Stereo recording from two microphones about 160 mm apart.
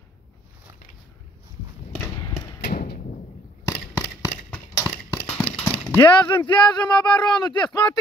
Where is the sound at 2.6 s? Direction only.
80° left.